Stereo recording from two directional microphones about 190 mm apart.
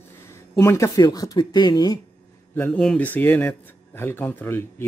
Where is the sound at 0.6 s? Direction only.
15° left (ahead or behind).